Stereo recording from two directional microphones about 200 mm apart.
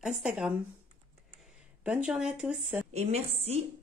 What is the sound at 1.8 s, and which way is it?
Speech, 5° right (ahead or behind).